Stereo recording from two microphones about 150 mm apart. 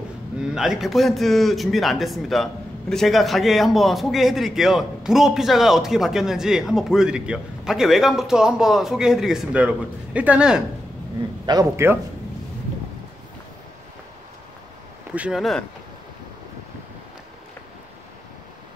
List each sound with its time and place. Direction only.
0.6 s a man's voice: 5° right (ahead or behind)
11.4 s a man's voice: 20° right (ahead or behind)
15.1 s a man's voice: 5° right (ahead or behind)